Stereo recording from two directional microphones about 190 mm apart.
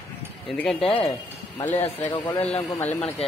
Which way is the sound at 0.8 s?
30° left (ahead or behind).